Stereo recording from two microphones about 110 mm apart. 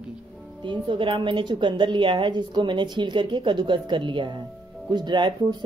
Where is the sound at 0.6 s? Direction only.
50° right (ahead or behind).